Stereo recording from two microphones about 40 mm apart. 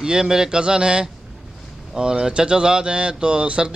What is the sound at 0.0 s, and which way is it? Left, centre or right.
A man's voice, centre.